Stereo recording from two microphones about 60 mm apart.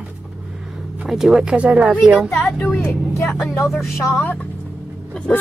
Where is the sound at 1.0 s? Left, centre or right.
Centre.